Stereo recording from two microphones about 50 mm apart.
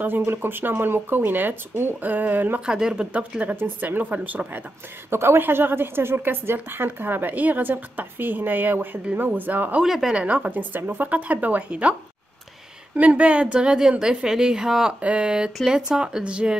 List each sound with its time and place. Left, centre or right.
0.2 s a woman's voice: right
2.6 s speech: centre
3.5 s speech: right
5.1 s a woman's voice: right
9.8 s a woman's voice: centre
10.2 s a woman's voice: right
11.1 s speech: right
12.9 s a woman's voice: right